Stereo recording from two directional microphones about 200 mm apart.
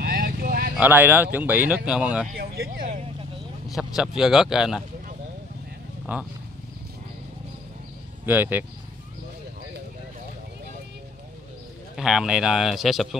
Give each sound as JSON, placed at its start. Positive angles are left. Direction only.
{"t": 0.0, "sound": "vehicle", "side_deg": -50}
{"t": 0.7, "sound": "speech", "side_deg": -10}
{"t": 2.3, "sound": "speech", "side_deg": -50}
{"t": 3.6, "sound": "speech", "side_deg": 0}
{"t": 6.1, "sound": "speech", "side_deg": -5}
{"t": 8.3, "sound": "speech", "side_deg": -10}
{"t": 12.0, "sound": "speech", "side_deg": 0}